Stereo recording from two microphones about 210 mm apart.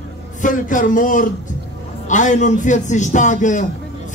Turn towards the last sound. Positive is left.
turn(degrees=35)  # may be behind; listen again after turning